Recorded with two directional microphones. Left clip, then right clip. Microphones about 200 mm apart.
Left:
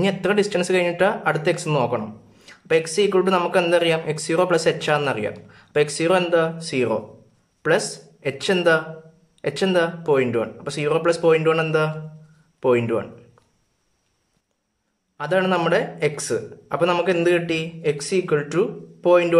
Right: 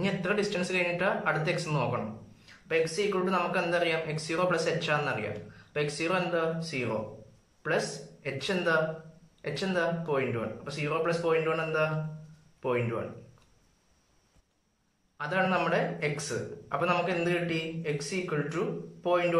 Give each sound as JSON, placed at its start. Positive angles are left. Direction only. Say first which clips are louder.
{"t": 0.0, "sound": "speech", "louder": "left 9 dB", "side_deg": 45}
{"t": 15.1, "sound": "speech", "louder": "left 8 dB", "side_deg": 40}